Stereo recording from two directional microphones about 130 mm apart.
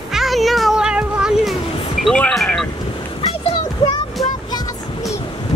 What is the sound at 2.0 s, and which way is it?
Music, 5° left (ahead or behind).